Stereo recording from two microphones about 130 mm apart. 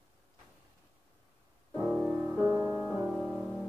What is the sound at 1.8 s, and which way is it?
Music, 10° right (ahead or behind).